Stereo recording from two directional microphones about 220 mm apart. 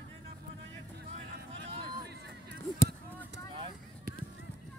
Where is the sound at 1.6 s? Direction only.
50° right (ahead or behind).